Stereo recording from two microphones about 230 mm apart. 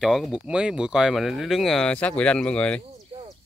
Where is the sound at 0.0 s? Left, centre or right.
Centre.